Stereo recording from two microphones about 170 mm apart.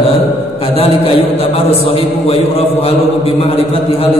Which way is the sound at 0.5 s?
35° left (ahead or behind).